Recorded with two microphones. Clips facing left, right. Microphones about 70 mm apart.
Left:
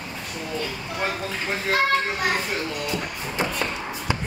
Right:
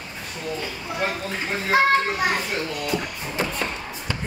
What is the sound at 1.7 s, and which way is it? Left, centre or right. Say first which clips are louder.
Children playing: right 4 dB; centre.